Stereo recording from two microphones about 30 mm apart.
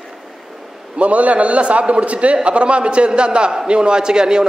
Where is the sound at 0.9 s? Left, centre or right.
Right.